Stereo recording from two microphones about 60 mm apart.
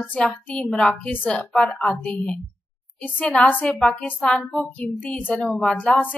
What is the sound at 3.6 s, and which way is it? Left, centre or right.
Speech, centre.